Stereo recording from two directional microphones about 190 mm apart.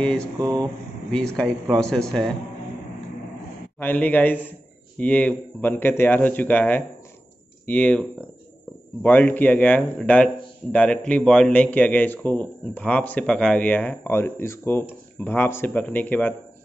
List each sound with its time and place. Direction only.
0.0 s speech: 5° left (ahead or behind)
0.4 s speech: 20° right (ahead or behind)
1.1 s speech: 5° left (ahead or behind)
3.8 s a man's voice: 10° left (ahead or behind)